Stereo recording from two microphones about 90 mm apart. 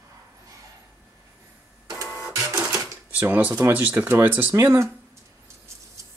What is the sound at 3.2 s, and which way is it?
Speech, 20° right (ahead or behind).